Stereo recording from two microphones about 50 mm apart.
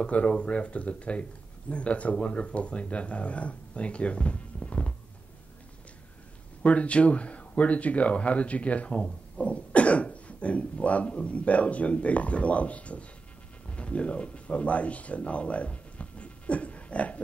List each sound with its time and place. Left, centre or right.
0.0 s speech: left
4.6 s a sound: left
6.6 s speech: left